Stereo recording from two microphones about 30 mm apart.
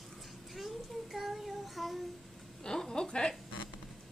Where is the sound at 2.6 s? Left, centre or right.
Left.